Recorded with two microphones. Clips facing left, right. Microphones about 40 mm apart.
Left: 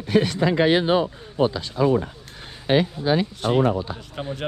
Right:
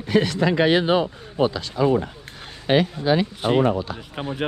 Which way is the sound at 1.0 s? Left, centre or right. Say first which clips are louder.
Even; right.